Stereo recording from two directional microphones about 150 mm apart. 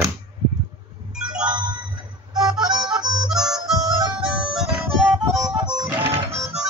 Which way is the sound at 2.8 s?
5° right (ahead or behind).